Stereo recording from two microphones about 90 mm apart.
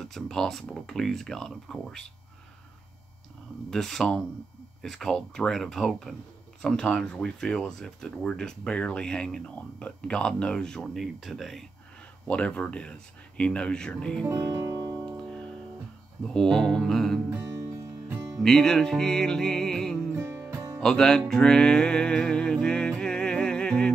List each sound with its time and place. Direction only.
0.0 s speech: 5° left (ahead or behind)
3.7 s speech: 5° left (ahead or behind)
12.3 s speech: 15° left (ahead or behind)
14.2 s music: 25° right (ahead or behind)
15.0 s music: 10° left (ahead or behind)
16.2 s speech: 5° left (ahead or behind)
17.3 s music: 20° right (ahead or behind)
17.7 s music: 35° right (ahead or behind)
18.4 s music: 5° left (ahead or behind)
20.2 s music: 25° right (ahead or behind)
20.8 s music: 5° left (ahead or behind)